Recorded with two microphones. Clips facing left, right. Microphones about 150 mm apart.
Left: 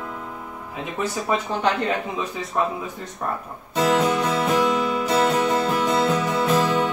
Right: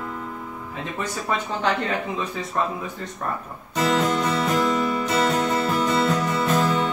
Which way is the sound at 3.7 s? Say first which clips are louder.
Left 2 dB; 10° left (ahead or behind).